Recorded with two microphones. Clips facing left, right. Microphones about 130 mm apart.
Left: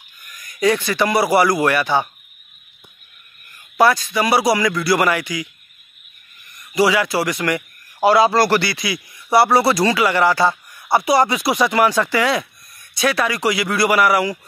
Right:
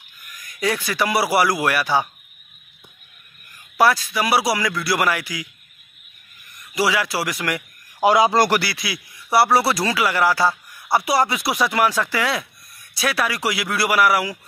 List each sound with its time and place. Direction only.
0.4 s a man's voice: centre (ahead or behind)
3.7 s a man's voice: 5° right (ahead or behind)
6.7 s a man's voice: centre (ahead or behind)
8.0 s a man's voice: 15° right (ahead or behind)
8.5 s a man's voice: 5° right (ahead or behind)